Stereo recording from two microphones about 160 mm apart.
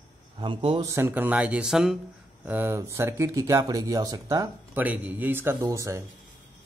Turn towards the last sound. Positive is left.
turn(degrees=-20)  # may be behind; listen again after turning